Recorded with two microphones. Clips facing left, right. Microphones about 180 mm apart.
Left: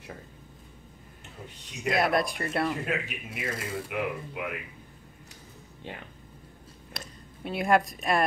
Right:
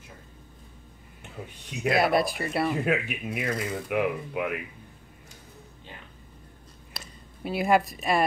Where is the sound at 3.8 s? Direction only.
55° right (ahead or behind).